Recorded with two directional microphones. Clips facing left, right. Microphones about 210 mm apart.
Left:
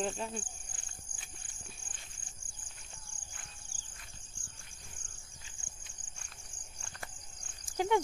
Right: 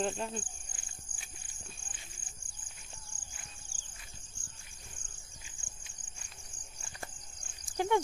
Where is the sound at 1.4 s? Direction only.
55° left (ahead or behind).